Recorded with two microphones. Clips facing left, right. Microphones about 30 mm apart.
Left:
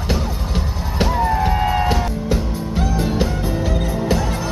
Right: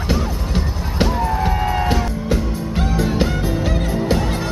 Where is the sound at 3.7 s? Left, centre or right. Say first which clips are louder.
Even; right.